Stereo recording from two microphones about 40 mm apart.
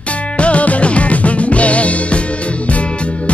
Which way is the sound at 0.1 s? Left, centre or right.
Left.